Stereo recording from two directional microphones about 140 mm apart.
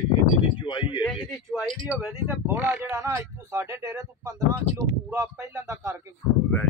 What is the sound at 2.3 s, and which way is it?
Speech, 15° right (ahead or behind).